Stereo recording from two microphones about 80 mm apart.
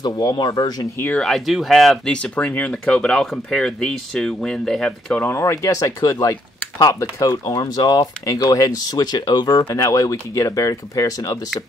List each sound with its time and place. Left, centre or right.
0.0 s speech: left
1.2 s speech: centre
2.3 s speech: centre
5.4 s speech: left
7.6 s speech: left
8.3 s speech: left
9.8 s speech: left